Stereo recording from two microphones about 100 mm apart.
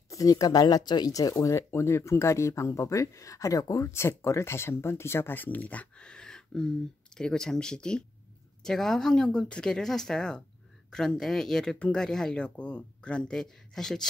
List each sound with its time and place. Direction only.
0.1 s speech: 35° left (ahead or behind); by 14.0 s 5° left (ahead or behind)